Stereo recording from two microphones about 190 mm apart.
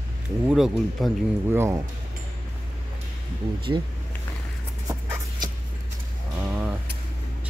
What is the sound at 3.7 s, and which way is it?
Speech, 20° right (ahead or behind).